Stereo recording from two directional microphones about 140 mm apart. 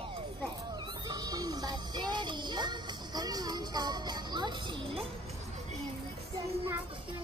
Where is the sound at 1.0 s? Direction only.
25° right (ahead or behind).